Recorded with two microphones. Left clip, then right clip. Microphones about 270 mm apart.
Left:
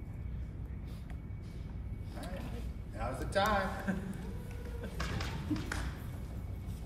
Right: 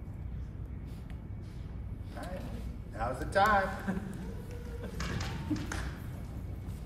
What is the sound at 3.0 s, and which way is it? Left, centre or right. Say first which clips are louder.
A man's voice: right 5 dB; centre.